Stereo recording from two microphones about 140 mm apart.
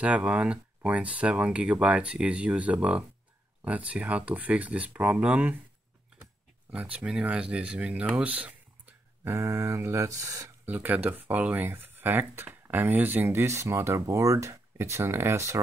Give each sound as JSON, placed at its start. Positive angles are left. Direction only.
{"t": 0.0, "sound": "speech", "side_deg": -10}
{"t": 6.7, "sound": "speech", "side_deg": -10}
{"t": 10.7, "sound": "speech", "side_deg": -10}